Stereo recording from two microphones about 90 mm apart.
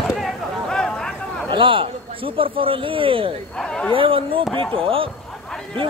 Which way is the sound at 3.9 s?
80° right.